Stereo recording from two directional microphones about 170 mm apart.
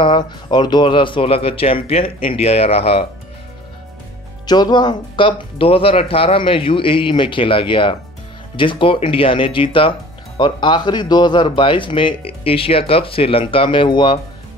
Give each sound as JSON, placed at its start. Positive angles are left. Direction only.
{"t": 0.0, "sound": "speech", "side_deg": 25}
{"t": 4.5, "sound": "speech", "side_deg": 25}